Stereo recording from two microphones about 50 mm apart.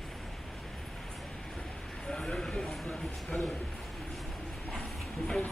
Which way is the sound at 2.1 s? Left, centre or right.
Centre.